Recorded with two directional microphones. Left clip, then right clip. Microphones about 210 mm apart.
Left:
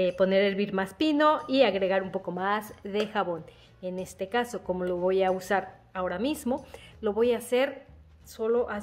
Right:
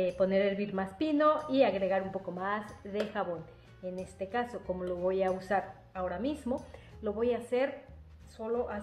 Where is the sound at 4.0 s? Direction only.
65° left (ahead or behind).